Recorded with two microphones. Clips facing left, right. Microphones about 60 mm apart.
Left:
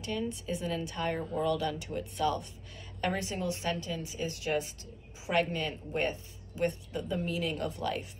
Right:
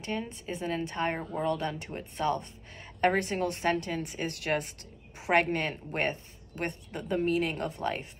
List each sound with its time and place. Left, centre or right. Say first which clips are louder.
0.0 s a woman's voice: even; right